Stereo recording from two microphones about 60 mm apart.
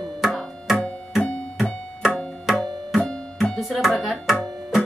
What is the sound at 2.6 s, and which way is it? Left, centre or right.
Music, centre.